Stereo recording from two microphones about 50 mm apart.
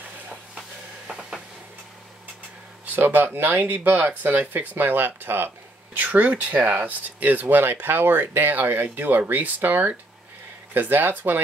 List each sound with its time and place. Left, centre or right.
0.3 s a sound: centre
3.0 s speech: right
5.9 s speech: right